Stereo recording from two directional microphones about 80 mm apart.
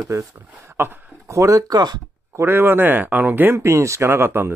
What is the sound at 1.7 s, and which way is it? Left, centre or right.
Speech, right.